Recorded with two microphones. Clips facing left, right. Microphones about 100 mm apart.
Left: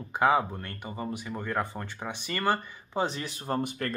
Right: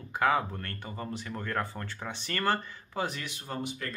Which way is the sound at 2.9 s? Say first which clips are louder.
Left 4 dB; 30° left (ahead or behind).